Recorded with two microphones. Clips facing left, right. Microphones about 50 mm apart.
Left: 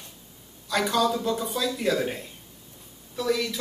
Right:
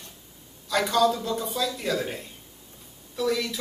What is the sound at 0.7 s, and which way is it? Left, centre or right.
Speech, centre.